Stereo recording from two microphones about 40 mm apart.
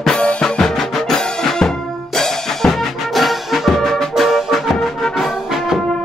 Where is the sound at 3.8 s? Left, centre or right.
Centre.